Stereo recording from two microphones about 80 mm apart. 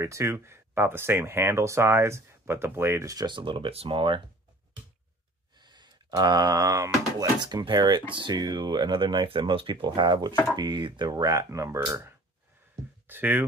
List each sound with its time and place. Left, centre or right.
0.0 s speech: right
3.3 s speech: right
5.6 s a sound: right
7.3 s speech: right
13.0 s speech: right